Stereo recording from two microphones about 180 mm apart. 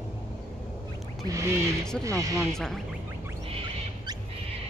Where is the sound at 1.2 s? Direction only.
15° right (ahead or behind).